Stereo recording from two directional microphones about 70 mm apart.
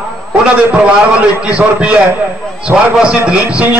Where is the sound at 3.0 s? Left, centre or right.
Centre.